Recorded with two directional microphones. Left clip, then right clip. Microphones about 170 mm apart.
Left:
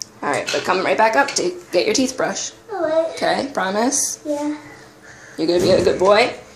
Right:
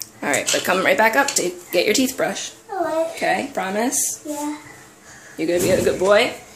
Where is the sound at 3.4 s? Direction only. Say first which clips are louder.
Left 3 dB; 5° right (ahead or behind).